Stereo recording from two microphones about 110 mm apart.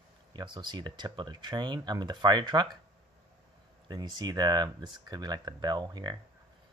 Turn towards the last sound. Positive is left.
turn(degrees=-40)  # may be behind; listen again after turning